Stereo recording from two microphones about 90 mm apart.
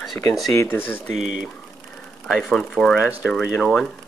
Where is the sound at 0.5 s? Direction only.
30° left (ahead or behind).